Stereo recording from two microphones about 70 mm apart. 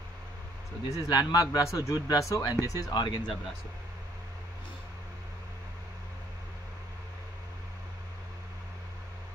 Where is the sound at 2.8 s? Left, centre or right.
Left.